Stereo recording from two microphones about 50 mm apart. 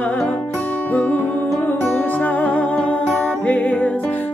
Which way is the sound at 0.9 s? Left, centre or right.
Left.